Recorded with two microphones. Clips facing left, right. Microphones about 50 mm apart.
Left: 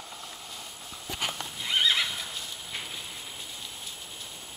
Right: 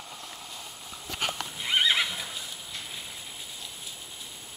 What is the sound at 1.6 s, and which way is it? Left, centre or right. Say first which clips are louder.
Horse: right 1 dB; centre.